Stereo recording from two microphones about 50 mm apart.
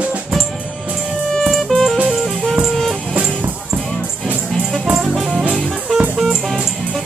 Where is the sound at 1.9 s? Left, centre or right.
Right.